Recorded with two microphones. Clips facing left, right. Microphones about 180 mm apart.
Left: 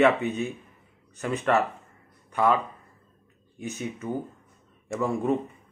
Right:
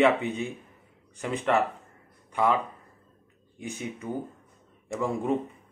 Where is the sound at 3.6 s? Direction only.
15° right (ahead or behind).